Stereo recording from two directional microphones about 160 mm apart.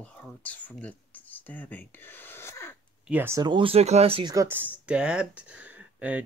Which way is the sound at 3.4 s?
30° right (ahead or behind).